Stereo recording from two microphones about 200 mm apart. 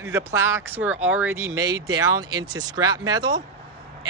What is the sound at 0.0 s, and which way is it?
Speech, 15° right (ahead or behind).